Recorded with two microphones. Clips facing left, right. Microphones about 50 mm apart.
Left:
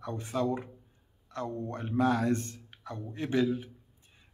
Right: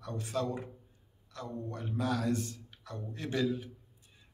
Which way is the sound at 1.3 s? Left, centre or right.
Left.